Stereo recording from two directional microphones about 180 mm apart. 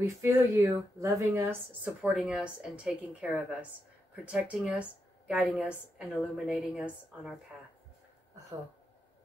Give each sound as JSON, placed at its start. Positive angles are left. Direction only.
{"t": 0.0, "sound": "a woman's voice", "side_deg": -15}